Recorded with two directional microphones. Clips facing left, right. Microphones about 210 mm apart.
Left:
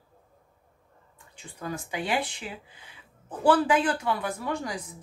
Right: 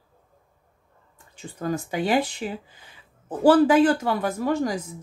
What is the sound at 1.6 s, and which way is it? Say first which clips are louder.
Speech: right 7 dB; 40° right (ahead or behind).